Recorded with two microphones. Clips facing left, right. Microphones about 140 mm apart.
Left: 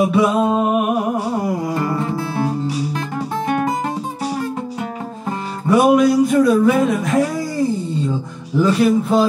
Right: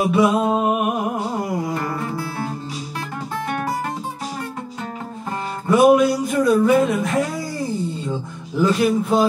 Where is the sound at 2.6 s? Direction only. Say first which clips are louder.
Left 9 dB; 70° left (ahead or behind).